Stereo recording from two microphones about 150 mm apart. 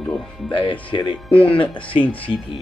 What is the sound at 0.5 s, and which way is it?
Speech, 35° left (ahead or behind).